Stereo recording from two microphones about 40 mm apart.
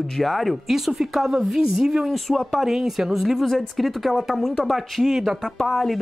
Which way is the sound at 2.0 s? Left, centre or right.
Centre.